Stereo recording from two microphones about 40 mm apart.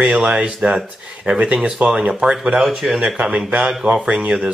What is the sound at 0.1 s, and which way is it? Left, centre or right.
A man's voice, right.